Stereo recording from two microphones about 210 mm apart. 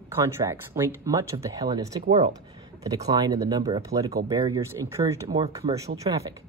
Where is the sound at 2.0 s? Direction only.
30° right (ahead or behind).